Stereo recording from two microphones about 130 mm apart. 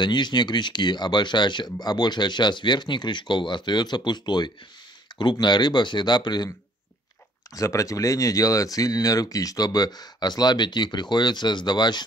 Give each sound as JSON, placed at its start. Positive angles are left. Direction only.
{"t": 0.0, "sound": "speech", "side_deg": 35}
{"t": 7.5, "sound": "speech", "side_deg": 25}